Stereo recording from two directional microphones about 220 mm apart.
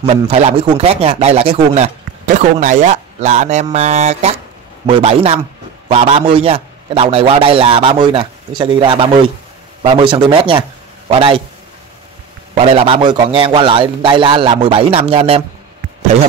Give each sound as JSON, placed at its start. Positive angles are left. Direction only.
{"t": 0.0, "sound": "speech", "side_deg": -30}
{"t": 12.5, "sound": "speech", "side_deg": -25}